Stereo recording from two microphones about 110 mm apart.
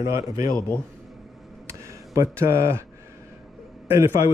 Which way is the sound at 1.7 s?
25° right (ahead or behind).